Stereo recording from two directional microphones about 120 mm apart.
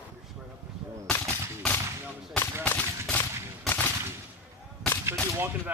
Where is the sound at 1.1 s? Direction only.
10° left (ahead or behind).